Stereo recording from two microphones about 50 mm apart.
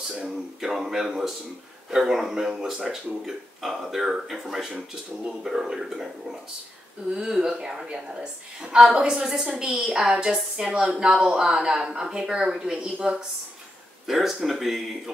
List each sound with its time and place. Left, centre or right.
0.1 s speech: centre
7.1 s a woman's voice: centre
9.8 s speech: centre
14.0 s speech: centre